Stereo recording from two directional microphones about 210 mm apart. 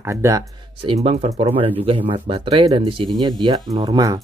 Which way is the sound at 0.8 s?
25° right (ahead or behind).